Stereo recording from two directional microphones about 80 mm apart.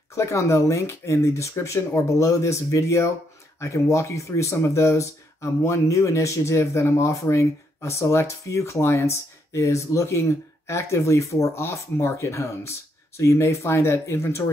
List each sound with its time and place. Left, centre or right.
0.1 s speech: left